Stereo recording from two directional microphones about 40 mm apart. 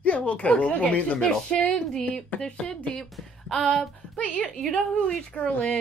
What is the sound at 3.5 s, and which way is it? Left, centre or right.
Speech, centre.